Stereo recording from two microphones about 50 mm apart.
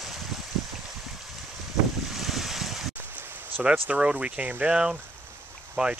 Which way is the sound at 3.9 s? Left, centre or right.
Right.